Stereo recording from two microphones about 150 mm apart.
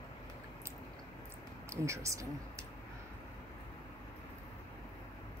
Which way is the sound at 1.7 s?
20° right (ahead or behind).